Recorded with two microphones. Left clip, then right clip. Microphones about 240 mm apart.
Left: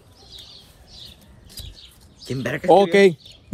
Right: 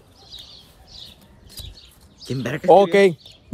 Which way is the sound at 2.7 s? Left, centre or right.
Right.